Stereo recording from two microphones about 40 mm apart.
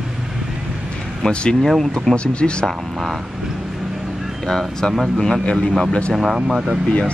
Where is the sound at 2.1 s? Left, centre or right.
Left.